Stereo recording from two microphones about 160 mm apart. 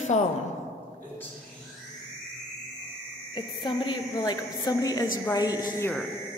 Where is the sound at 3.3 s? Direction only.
30° left (ahead or behind).